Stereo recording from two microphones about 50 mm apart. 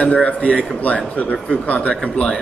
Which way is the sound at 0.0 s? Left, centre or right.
Left.